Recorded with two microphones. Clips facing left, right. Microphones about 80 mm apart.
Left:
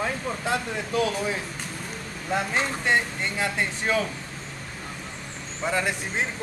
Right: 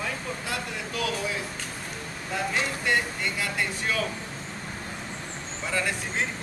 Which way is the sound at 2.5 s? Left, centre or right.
Left.